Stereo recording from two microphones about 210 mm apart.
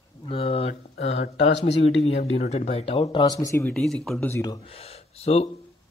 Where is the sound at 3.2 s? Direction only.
15° left (ahead or behind).